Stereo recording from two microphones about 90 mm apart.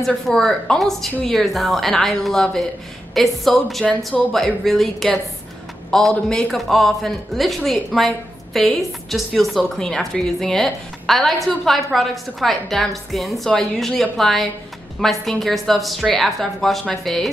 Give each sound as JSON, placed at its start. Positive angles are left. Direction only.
{"t": 0.0, "sound": "a woman's voice", "side_deg": 5}